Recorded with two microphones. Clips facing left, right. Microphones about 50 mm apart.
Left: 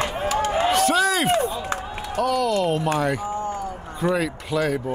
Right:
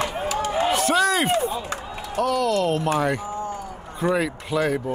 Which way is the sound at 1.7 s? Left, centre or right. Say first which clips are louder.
Left 3 dB; left.